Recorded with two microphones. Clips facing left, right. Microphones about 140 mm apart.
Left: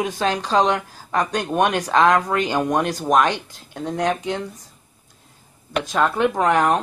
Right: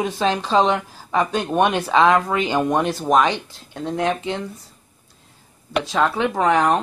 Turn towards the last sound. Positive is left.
turn(degrees=0)  # may be behind; listen again after turning